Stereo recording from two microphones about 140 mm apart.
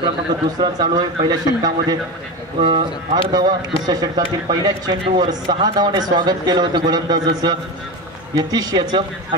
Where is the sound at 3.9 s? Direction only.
30° right (ahead or behind).